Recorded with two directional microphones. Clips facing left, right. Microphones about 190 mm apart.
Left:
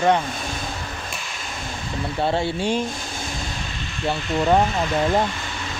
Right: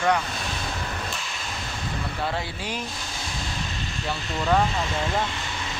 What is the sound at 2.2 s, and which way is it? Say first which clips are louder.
Speech: left 11 dB; 25° left (ahead or behind).